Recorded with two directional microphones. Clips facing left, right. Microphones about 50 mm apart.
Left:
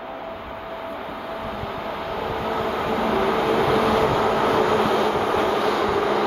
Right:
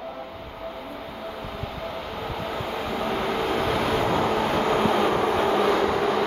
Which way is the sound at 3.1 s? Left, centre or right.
Centre.